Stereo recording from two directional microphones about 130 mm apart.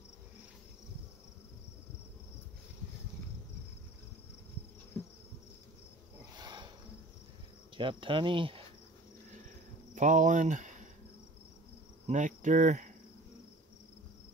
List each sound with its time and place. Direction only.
6.3 s a sound: 35° right (ahead or behind)
7.7 s cricket: 40° right (ahead or behind)
9.9 s speech: 70° right (ahead or behind)
12.1 s cricket: 75° right (ahead or behind)